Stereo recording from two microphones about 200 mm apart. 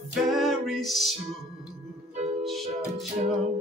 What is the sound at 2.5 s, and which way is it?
Music, centre (ahead or behind).